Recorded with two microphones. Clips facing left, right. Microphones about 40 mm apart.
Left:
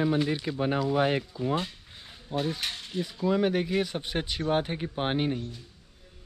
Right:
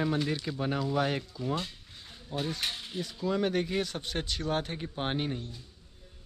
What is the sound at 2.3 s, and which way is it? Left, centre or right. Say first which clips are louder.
Speech: left 3 dB; centre.